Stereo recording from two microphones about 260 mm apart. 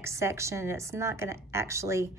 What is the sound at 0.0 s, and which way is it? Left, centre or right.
Speech, centre.